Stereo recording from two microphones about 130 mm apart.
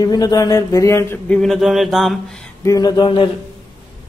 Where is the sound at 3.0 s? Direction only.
35° left (ahead or behind).